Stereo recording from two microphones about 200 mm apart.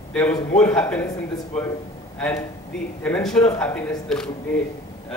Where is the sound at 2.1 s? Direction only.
5° left (ahead or behind).